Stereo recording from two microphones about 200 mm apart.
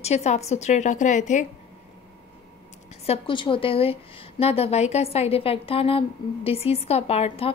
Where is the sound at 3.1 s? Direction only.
25° left (ahead or behind).